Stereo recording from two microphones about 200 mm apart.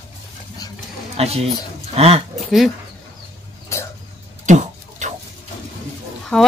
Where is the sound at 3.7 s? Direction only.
15° left (ahead or behind).